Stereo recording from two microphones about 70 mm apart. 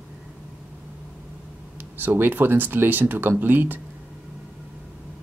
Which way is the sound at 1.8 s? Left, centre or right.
Right.